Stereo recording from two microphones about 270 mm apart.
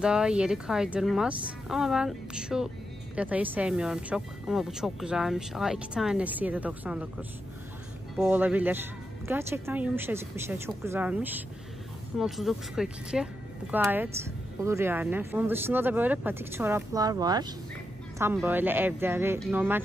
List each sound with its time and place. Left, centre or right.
0.0 s speech: centre